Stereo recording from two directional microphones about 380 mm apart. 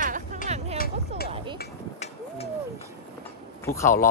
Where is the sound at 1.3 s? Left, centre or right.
Centre.